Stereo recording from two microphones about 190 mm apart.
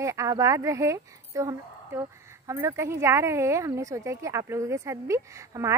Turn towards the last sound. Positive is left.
turn(degrees=-15)  # may be behind; listen again after turning